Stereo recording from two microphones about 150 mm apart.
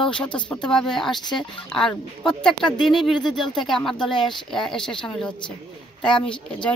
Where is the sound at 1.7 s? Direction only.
5° left (ahead or behind).